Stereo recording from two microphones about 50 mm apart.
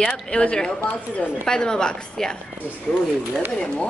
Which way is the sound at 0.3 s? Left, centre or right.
Left.